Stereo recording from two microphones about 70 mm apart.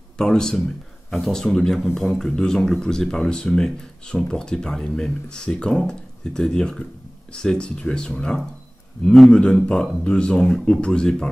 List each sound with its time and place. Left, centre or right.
0.2 s a man's voice: centre